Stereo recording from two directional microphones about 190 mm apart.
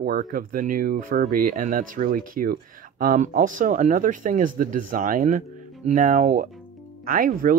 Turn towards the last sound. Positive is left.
turn(degrees=-45)  # may be behind; listen again after turning